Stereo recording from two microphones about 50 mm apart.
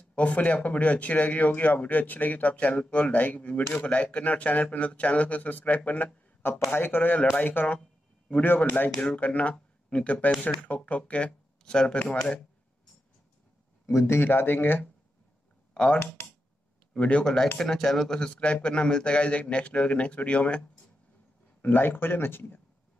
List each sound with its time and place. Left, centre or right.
0.1 s speech: left
6.7 s speech: left
11.6 s speech: centre
13.8 s speech: left
15.7 s speech: centre
17.2 s speech: centre
21.5 s speech: left